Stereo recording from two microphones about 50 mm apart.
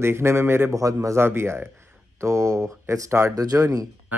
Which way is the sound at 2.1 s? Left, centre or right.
Right.